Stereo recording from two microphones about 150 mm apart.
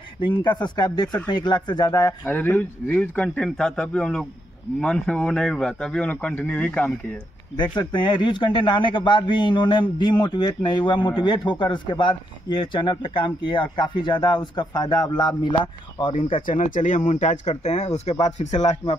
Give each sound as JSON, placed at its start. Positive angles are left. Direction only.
{"t": 0.2, "sound": "speech", "side_deg": 35}
{"t": 2.2, "sound": "a man's voice", "side_deg": 10}
{"t": 7.5, "sound": "speech", "side_deg": 30}
{"t": 16.4, "sound": "speech", "side_deg": 60}